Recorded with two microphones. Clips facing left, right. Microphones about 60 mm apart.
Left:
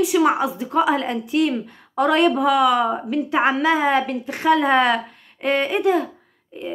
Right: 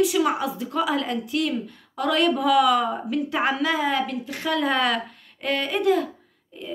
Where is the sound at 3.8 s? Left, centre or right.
Left.